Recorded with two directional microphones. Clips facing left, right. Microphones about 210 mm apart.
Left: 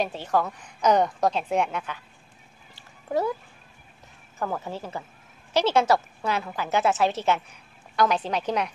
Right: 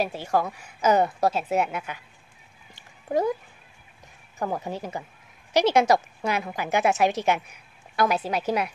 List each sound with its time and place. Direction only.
0.0 s a woman's voice: 10° right (ahead or behind)
2.7 s a sound: 15° right (ahead or behind)
4.4 s a woman's voice: 15° right (ahead or behind)